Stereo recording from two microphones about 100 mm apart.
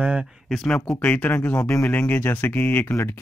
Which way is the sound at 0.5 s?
5° left (ahead or behind).